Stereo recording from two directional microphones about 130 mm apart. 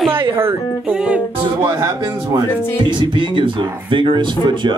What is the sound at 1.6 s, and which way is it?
A man's voice, 25° right (ahead or behind).